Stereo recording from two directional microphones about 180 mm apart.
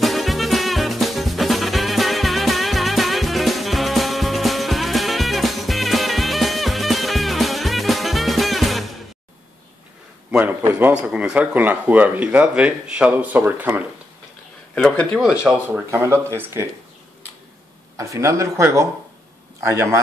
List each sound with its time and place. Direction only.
0.0 s music: centre (ahead or behind)
10.6 s speech: 10° right (ahead or behind)
14.8 s speech: 5° left (ahead or behind); by 16.6 s 15° right (ahead or behind)
17.9 s speech: 15° right (ahead or behind)